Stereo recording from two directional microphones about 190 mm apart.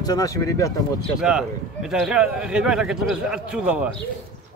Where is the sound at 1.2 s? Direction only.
5° right (ahead or behind).